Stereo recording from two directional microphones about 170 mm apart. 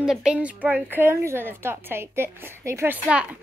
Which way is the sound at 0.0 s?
5° right (ahead or behind).